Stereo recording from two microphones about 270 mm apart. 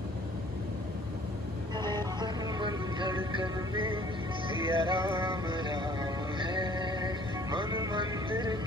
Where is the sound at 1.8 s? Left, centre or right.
Centre.